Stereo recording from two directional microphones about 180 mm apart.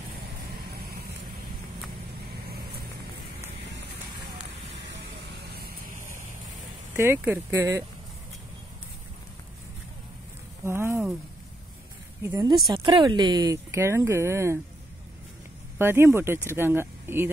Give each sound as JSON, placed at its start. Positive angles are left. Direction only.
{"t": 0.6, "sound": "vehicle", "side_deg": -60}
{"t": 4.8, "sound": "vehicle", "side_deg": -75}
{"t": 7.0, "sound": "speech", "side_deg": -10}
{"t": 10.6, "sound": "insect", "side_deg": -15}
{"t": 12.2, "sound": "speech", "side_deg": -15}
{"t": 15.8, "sound": "speech", "side_deg": -15}